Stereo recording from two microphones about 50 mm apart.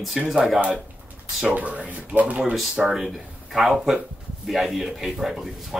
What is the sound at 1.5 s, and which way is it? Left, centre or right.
Speech, right.